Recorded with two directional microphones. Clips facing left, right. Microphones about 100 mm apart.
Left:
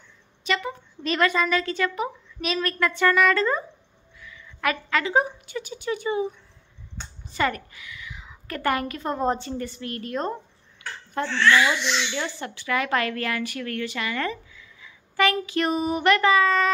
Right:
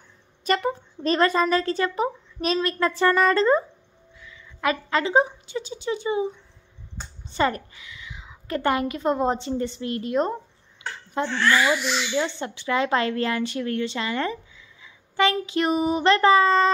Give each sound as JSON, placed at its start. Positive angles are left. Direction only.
{"t": 0.4, "sound": "a woman's voice", "side_deg": -45}
{"t": 11.5, "sound": "speech", "side_deg": -5}
{"t": 12.3, "sound": "a woman's voice", "side_deg": -25}